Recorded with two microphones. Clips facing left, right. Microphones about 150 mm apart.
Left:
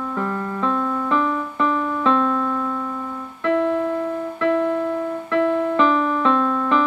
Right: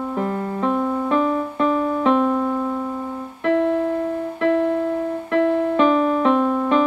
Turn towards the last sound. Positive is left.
turn(degrees=-20)  # may be behind; listen again after turning